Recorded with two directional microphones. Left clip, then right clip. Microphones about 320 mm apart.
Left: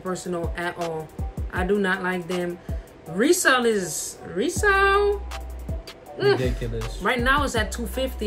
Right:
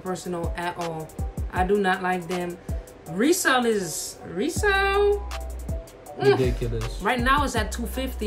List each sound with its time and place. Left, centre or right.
0.0 s speech: centre